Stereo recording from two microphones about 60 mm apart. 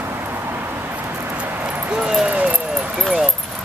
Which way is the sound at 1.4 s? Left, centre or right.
Right.